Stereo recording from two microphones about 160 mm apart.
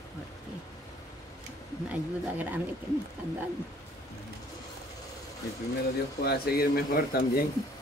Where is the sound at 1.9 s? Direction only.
10° right (ahead or behind).